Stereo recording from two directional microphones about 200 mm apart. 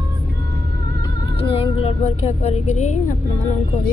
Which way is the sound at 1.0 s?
25° left (ahead or behind).